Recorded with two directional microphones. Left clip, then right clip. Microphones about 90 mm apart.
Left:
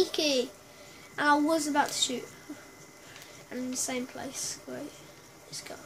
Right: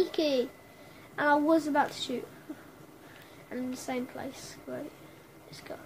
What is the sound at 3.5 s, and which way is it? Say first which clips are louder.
Speech: left 1 dB; 30° right (ahead or behind).